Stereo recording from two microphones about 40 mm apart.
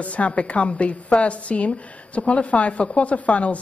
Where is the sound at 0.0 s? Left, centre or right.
Left.